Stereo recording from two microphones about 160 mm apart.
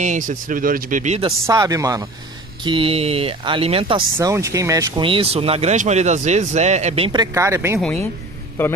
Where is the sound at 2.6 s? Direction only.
35° right (ahead or behind).